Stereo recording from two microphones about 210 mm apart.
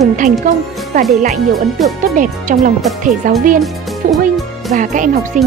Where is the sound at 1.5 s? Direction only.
Centre (ahead or behind).